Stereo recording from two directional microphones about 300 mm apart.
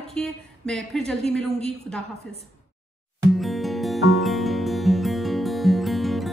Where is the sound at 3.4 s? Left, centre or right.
Centre.